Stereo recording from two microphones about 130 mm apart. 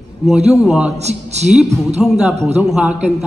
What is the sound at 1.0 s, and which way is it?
Speech, 60° right (ahead or behind).